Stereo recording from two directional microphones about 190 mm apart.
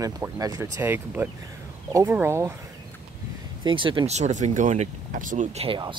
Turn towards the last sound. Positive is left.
turn(degrees=-25)  # may be behind; listen again after turning